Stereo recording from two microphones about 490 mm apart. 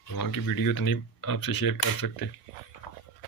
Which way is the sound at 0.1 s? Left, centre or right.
Left.